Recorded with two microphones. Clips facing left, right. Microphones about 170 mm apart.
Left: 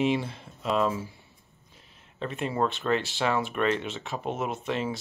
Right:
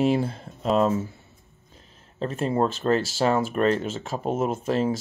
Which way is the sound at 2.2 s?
40° right (ahead or behind).